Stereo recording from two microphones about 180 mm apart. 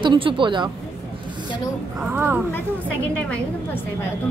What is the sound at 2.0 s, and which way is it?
Speech, 10° right (ahead or behind).